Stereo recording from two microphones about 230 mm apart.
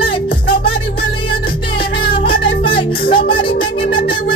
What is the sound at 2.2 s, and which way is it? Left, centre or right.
Music, left.